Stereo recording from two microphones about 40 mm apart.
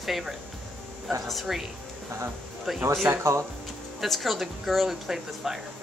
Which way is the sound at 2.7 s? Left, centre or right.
Centre.